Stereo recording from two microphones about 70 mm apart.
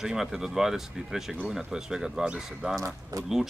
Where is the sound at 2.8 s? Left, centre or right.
Right.